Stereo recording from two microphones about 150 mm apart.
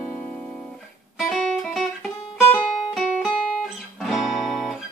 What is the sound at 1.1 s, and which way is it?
Music, centre (ahead or behind).